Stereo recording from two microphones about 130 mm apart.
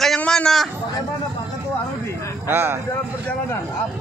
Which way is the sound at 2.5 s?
20° right (ahead or behind).